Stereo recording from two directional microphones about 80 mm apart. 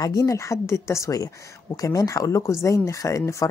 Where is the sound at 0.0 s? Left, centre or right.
Left.